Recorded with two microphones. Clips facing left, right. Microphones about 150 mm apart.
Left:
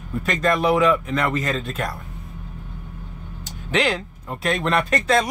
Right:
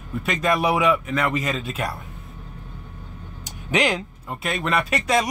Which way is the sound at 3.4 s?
15° right (ahead or behind).